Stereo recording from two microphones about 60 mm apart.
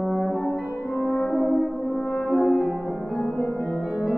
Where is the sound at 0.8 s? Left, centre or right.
Left.